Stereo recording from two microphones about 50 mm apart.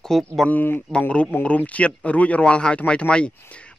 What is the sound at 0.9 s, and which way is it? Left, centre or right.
A man's voice, left.